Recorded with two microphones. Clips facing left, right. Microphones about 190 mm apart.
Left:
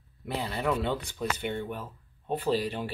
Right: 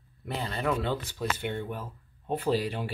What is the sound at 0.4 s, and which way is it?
Speech, centre (ahead or behind).